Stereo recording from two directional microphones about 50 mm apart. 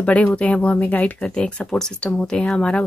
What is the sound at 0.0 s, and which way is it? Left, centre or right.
Speech, left.